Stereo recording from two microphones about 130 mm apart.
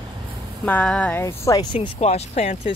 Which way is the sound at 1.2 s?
20° left (ahead or behind).